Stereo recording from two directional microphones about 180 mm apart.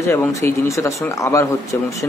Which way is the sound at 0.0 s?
15° left (ahead or behind).